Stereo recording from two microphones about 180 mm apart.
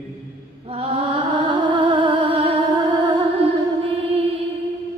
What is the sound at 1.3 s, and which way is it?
Music, 25° right (ahead or behind).